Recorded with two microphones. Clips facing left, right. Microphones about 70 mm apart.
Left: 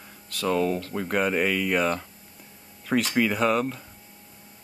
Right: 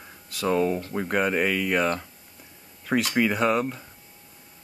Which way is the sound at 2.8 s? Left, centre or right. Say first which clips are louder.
Even; centre.